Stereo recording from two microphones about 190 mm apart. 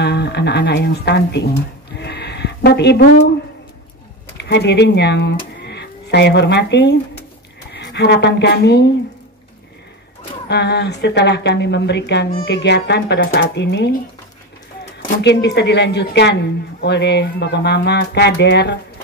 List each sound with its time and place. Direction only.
0.0 s speech: 60° left (ahead or behind)
2.0 s a sound: 60° left (ahead or behind)
4.4 s a woman's voice: 60° left (ahead or behind)
10.5 s speech: 60° left (ahead or behind)
15.2 s speech: 65° left (ahead or behind)